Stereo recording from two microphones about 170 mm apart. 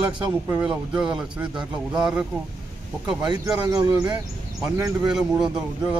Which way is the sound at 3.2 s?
25° right (ahead or behind).